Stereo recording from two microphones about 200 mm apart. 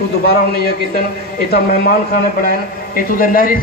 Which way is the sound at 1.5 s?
50° left (ahead or behind).